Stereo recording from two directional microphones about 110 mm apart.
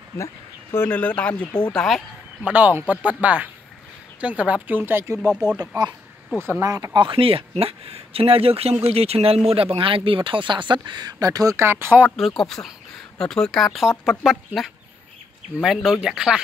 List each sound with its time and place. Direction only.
0.2 s speech: 20° left (ahead or behind); by 2.0 s 5° left (ahead or behind)
2.4 s speech: 15° right (ahead or behind)
6.6 s speech: 30° right (ahead or behind)
7.0 s speech: 50° right (ahead or behind); by 12.1 s 20° right (ahead or behind)
12.2 s speech: centre (ahead or behind)